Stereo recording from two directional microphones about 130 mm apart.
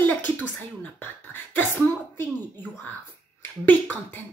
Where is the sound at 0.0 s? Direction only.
15° left (ahead or behind).